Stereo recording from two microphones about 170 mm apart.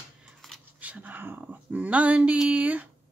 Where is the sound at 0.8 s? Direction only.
10° right (ahead or behind).